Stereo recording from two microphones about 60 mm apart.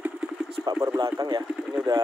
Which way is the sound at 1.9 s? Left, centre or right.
Right.